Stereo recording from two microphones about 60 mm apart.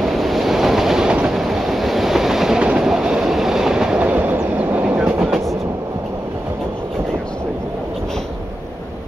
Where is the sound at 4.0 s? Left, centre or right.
Right.